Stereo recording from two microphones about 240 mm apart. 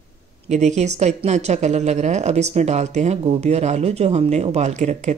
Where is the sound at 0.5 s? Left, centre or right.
Right.